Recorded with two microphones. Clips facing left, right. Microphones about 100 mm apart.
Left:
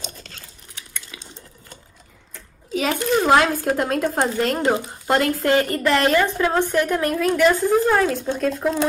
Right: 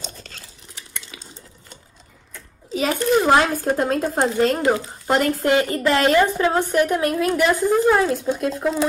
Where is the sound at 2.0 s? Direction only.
40° right (ahead or behind).